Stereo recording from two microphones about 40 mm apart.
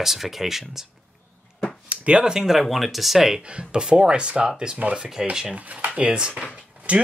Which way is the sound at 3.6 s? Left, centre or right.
Right.